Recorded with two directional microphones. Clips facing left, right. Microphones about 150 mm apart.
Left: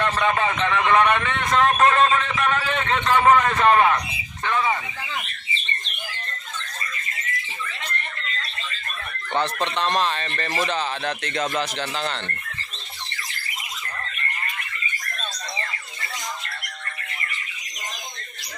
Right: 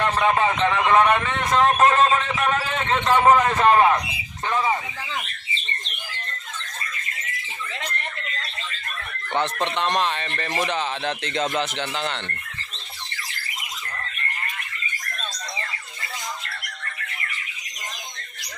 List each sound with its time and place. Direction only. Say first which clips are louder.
0.0 s a man's voice: right 2 dB; 20° right (ahead or behind)
1.4 s a man's voice: even; 30° right (ahead or behind)
9.3 s speech: even; 20° right (ahead or behind)